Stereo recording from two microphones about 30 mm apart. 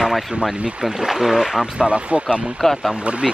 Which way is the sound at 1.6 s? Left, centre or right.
Right.